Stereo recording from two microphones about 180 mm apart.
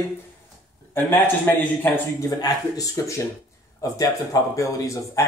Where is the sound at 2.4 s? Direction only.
20° left (ahead or behind).